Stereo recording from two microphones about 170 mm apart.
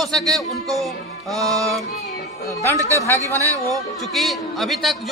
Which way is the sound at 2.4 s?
15° left (ahead or behind).